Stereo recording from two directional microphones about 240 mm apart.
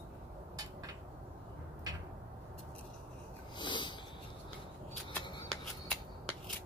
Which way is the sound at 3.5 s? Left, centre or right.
Centre.